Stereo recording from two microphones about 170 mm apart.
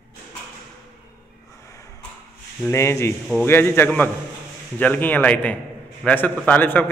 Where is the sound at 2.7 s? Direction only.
15° left (ahead or behind).